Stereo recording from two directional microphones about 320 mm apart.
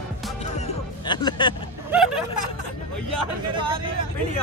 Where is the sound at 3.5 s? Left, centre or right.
Centre.